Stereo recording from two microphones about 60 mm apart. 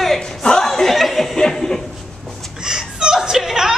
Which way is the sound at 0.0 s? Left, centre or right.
Centre.